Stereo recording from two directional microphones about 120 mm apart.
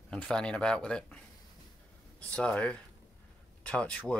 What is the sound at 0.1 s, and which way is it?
Speech, 5° left (ahead or behind).